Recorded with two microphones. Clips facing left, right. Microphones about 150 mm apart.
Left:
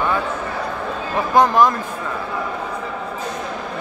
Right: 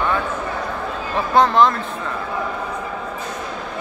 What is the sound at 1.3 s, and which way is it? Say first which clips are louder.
Speech: even; 15° left (ahead or behind).